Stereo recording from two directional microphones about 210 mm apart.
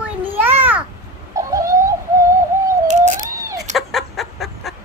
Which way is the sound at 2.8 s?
35° right (ahead or behind).